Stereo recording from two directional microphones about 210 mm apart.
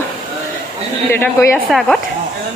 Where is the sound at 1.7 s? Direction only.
Centre (ahead or behind).